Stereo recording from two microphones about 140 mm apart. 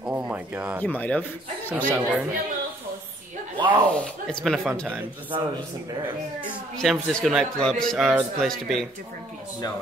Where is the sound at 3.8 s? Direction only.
10° left (ahead or behind).